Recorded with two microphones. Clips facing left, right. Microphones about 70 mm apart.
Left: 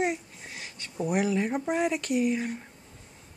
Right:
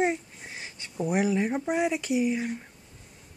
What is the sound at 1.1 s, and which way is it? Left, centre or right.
Speech, centre.